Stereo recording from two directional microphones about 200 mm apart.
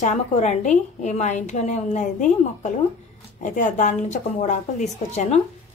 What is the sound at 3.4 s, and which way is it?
A woman's voice, 40° left (ahead or behind).